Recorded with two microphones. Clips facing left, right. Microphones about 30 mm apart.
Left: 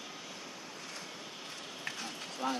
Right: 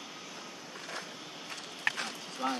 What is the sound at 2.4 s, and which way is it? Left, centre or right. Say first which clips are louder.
Speech: right 2 dB; right.